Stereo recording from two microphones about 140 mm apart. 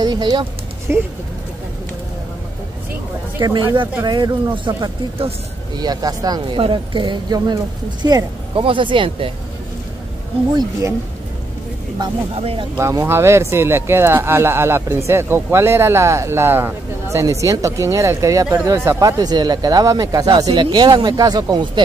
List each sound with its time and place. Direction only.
0.0 s speech: 30° right (ahead or behind)
0.9 s speech: 15° right (ahead or behind)
3.3 s speech: 30° right (ahead or behind)
12.4 s speech: 45° right (ahead or behind)
12.7 s speech: 20° right (ahead or behind)